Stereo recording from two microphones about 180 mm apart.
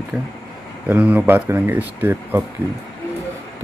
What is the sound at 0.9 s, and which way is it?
Speech, 10° right (ahead or behind).